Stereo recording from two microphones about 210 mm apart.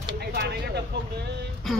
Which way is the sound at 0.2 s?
50° right (ahead or behind).